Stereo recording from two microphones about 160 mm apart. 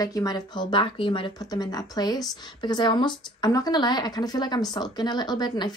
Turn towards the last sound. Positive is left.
turn(degrees=25)  # may be behind; listen again after turning